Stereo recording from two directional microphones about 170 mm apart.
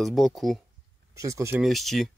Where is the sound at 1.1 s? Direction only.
20° right (ahead or behind).